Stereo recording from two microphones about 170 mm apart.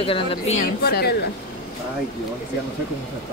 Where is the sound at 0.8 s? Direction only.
70° left (ahead or behind).